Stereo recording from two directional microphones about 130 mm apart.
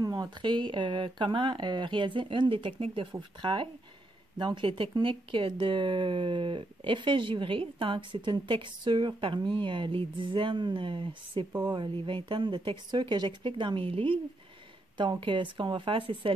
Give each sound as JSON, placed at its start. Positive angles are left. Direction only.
{"t": 0.0, "sound": "speech", "side_deg": -30}